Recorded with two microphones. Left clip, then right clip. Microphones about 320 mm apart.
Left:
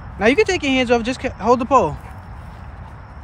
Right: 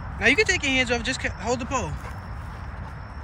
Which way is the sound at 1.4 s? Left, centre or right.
Left.